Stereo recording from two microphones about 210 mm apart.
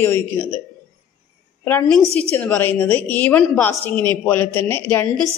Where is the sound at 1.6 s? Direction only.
5° left (ahead or behind).